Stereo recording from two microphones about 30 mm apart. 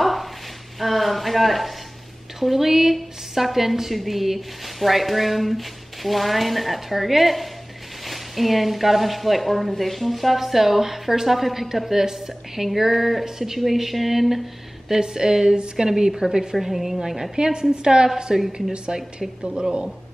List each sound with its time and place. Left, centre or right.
0.0 s a sound: centre
2.4 s a woman's voice: centre
15.0 s a woman's voice: right
16.6 s a woman's voice: centre
17.4 s a woman's voice: right
18.9 s a woman's voice: right